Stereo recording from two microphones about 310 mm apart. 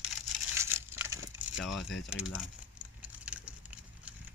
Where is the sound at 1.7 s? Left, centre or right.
Left.